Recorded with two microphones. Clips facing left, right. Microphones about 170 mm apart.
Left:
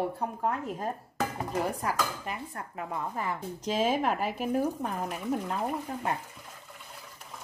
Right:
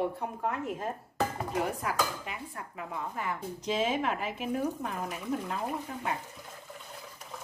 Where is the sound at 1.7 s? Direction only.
40° left (ahead or behind).